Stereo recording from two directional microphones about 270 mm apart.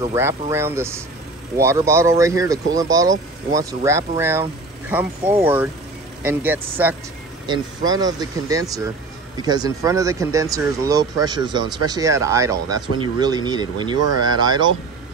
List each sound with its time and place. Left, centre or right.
0.0 s speech: centre